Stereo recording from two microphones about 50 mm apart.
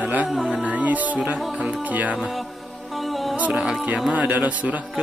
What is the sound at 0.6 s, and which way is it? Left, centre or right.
A man's voice, right.